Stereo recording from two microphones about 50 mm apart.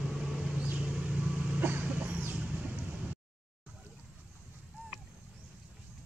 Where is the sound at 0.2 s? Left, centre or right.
Centre.